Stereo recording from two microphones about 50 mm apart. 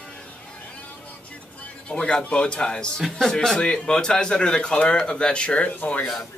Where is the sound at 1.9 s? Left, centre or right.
Centre.